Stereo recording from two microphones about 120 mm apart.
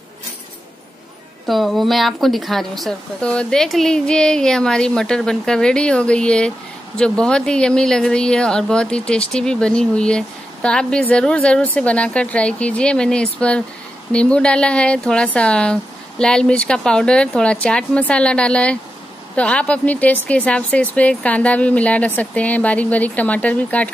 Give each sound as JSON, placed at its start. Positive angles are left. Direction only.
{"t": 1.5, "sound": "speech", "side_deg": 0}